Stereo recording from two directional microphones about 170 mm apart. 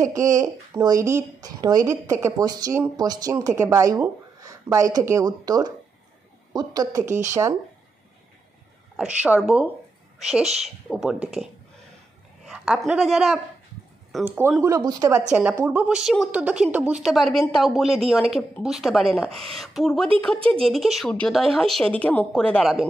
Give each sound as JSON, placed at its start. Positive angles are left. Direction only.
{"t": 0.0, "sound": "speech", "side_deg": -20}
{"t": 8.9, "sound": "a woman's voice", "side_deg": -5}
{"t": 12.4, "sound": "a woman's voice", "side_deg": -5}
{"t": 20.3, "sound": "speech", "side_deg": -30}
{"t": 20.6, "sound": "a woman's voice", "side_deg": 0}